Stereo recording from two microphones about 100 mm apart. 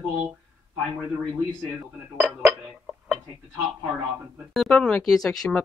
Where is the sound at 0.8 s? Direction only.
10° right (ahead or behind).